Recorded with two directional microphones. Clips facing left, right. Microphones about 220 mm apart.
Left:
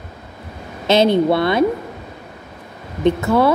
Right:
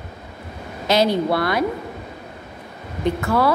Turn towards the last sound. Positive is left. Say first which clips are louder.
# left 4 dB
turn(degrees=25)  # may be behind; listen again after turning